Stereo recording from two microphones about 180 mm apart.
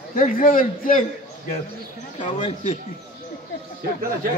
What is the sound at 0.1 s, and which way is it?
Speech, 50° left (ahead or behind).